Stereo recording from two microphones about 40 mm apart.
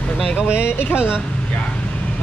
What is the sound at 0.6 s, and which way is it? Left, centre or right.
Speech, left.